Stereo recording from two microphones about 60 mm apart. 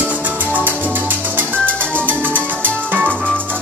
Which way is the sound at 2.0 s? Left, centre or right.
Right.